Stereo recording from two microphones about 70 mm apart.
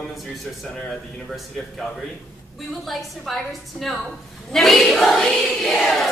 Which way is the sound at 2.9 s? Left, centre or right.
Centre.